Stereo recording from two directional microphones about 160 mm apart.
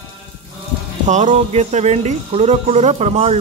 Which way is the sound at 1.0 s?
50° right (ahead or behind).